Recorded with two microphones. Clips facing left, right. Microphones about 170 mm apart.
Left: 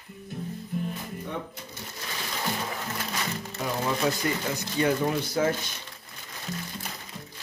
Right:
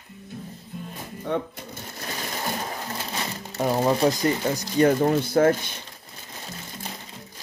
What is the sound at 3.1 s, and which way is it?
Speech, 40° right (ahead or behind).